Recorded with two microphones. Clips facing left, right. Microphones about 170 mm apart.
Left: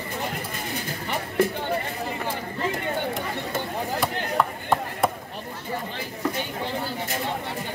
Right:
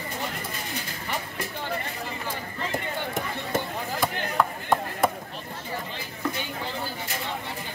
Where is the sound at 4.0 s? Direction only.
Centre (ahead or behind).